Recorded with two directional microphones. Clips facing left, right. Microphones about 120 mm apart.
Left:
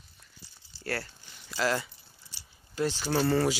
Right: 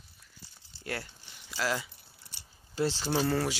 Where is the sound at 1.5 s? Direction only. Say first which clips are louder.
Left 3 dB; 5° right (ahead or behind).